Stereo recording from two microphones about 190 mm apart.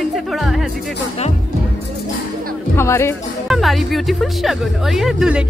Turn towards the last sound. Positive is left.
turn(degrees=-5)  # may be behind; listen again after turning